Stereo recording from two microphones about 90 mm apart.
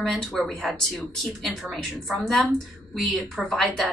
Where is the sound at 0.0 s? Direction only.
5° left (ahead or behind).